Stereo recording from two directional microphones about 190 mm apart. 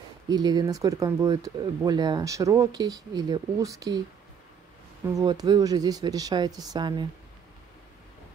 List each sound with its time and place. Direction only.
0.3 s speech: 20° right (ahead or behind)
5.1 s speech: 20° right (ahead or behind)